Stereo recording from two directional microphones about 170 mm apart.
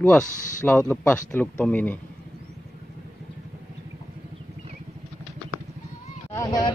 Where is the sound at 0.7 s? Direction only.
10° left (ahead or behind).